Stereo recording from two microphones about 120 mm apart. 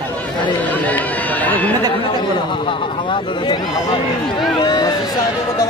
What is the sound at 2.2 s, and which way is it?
A man's voice, 45° left (ahead or behind).